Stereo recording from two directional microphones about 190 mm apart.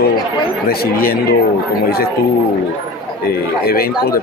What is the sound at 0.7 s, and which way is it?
Speech, 55° left (ahead or behind).